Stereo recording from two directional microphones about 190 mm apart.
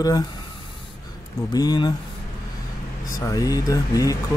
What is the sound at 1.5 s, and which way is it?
Speech, 20° left (ahead or behind).